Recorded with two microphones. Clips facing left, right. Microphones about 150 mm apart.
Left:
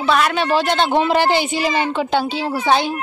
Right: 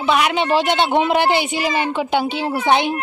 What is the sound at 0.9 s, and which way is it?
A woman's voice, 10° right (ahead or behind).